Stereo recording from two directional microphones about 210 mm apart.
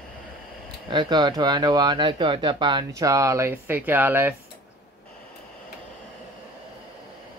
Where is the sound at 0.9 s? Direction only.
20° right (ahead or behind).